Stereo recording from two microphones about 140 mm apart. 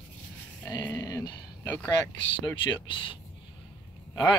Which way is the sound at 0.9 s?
25° left (ahead or behind).